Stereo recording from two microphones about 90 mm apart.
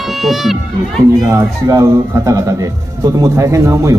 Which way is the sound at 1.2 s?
35° right (ahead or behind).